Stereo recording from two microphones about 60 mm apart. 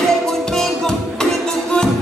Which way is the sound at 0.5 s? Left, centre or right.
Centre.